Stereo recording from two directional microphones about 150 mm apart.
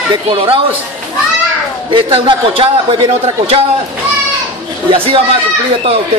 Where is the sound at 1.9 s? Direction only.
35° right (ahead or behind).